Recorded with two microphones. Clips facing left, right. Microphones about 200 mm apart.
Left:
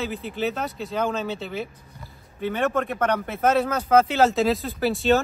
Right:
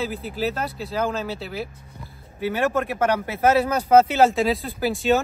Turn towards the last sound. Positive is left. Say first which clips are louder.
# even
turn(degrees=0)  # may be behind; listen again after turning